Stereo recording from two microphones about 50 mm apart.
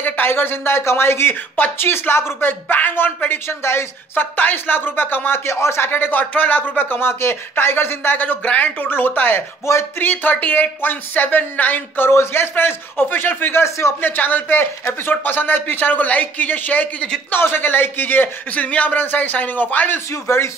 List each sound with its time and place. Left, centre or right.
0.0 s speech: left
3.4 s speech: left
5.4 s speech: left
5.9 s speech: left
12.1 s speech: left
13.7 s speech: left
14.0 s speech: left
17.3 s speech: left
18.5 s speech: left
20.1 s speech: left